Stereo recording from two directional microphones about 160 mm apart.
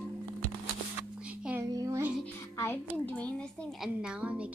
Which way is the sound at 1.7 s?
20° right (ahead or behind).